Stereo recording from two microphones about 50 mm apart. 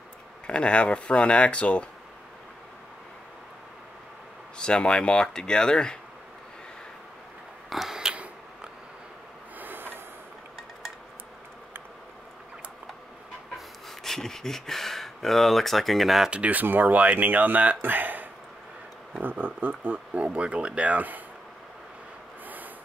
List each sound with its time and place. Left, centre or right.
0.5 s speech: left
4.6 s speech: centre
7.7 s a sound: centre
9.6 s a sound: right
13.8 s speech: centre
16.3 s speech: right
20.2 s speech: right